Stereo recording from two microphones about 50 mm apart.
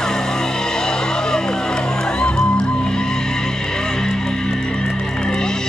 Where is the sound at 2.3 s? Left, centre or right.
Centre.